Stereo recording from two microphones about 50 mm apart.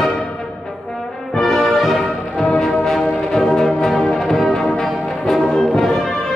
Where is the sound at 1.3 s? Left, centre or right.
Centre.